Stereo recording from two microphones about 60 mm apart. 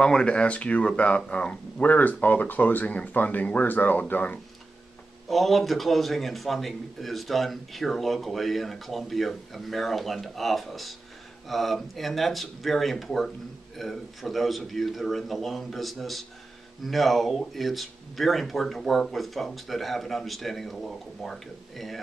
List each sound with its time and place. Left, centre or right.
0.0 s speech: centre
5.3 s a man's voice: centre